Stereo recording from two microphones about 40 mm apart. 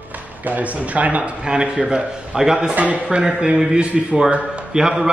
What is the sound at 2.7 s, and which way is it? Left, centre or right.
A man's voice, right.